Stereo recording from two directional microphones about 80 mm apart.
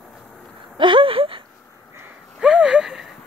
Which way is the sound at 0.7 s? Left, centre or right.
Right.